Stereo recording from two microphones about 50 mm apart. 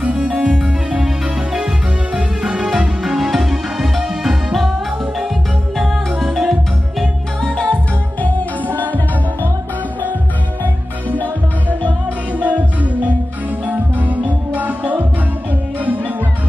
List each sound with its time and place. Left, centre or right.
0.0 s music: right; by 4.7 s centre
5.8 s music: centre
7.4 s music: centre
12.4 s music: right